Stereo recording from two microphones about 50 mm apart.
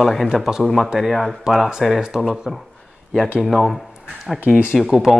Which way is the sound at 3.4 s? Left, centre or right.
Centre.